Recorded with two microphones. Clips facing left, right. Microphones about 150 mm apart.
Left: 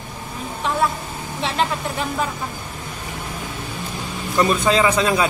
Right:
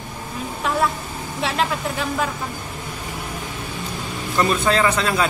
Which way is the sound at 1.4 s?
Centre (ahead or behind).